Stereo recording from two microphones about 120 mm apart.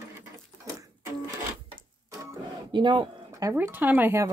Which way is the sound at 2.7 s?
40° right (ahead or behind).